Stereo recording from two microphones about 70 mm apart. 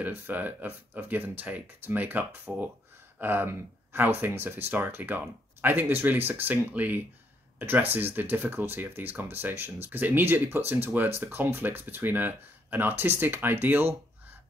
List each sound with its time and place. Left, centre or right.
0.0 s speech: right
2.5 s speech: centre
3.2 s speech: right